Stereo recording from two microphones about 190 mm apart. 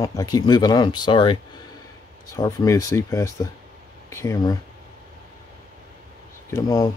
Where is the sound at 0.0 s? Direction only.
20° left (ahead or behind).